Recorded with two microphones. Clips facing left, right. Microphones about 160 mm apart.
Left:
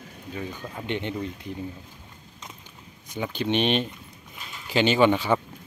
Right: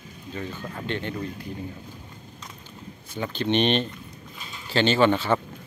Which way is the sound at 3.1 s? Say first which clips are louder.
Right 1 dB; 10° left (ahead or behind).